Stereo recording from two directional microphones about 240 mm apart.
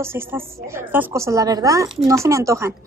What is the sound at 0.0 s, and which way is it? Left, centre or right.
A woman's voice, centre.